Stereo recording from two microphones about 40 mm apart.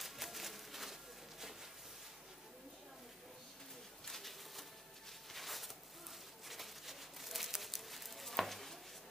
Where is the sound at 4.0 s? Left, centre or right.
Centre.